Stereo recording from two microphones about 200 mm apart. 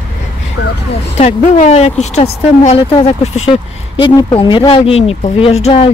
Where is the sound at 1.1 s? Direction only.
35° left (ahead or behind).